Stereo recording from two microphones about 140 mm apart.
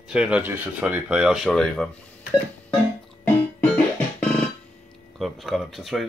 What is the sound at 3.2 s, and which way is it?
Music, 10° left (ahead or behind).